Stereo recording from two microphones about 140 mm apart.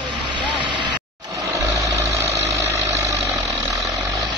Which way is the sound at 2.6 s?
25° right (ahead or behind).